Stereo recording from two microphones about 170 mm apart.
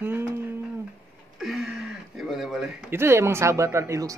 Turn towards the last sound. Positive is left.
turn(degrees=-20)  # may be behind; listen again after turning